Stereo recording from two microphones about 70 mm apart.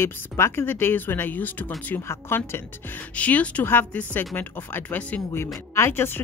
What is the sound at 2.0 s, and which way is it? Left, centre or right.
Speech, left.